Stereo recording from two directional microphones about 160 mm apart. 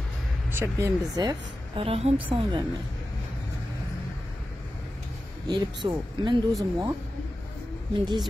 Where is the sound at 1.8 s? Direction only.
35° right (ahead or behind).